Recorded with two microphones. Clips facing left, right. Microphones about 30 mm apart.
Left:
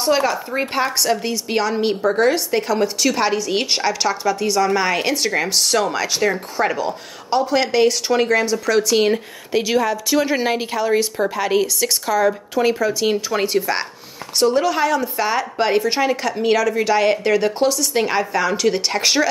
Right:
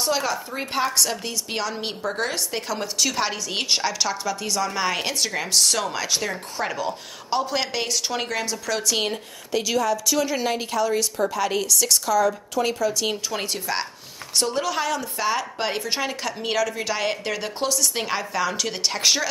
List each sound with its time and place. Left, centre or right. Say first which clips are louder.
0.0 s speech: left 6 dB; centre
9.1 s a woman's voice: left 6 dB; left